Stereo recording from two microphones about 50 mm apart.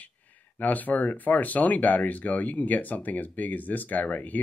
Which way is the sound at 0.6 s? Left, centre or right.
Left.